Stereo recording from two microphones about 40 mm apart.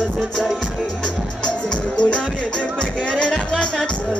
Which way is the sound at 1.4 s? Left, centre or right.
Left.